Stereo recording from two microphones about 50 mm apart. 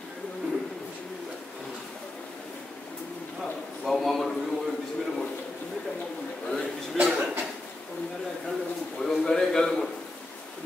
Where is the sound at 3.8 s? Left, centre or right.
Centre.